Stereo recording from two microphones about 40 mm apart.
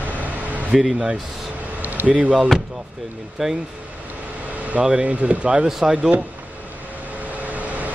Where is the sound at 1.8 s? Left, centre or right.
Right.